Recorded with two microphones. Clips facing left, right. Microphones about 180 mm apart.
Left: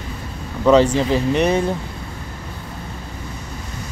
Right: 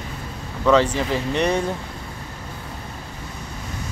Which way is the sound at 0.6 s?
15° left (ahead or behind).